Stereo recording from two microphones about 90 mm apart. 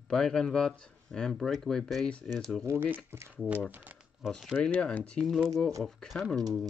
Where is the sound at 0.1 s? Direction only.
5° left (ahead or behind).